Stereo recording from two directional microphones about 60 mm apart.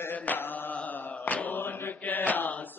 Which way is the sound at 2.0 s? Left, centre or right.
Left.